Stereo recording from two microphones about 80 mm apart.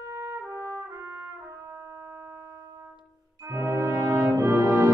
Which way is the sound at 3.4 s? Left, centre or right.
Right.